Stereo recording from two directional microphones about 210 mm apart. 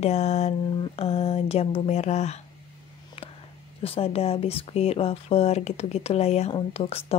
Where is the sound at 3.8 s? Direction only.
30° left (ahead or behind).